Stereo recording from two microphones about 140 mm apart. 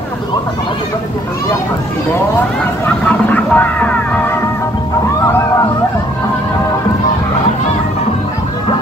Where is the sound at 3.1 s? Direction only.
10° left (ahead or behind).